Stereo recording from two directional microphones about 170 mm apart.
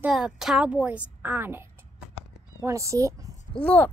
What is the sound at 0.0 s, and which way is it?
A woman's voice, 5° right (ahead or behind).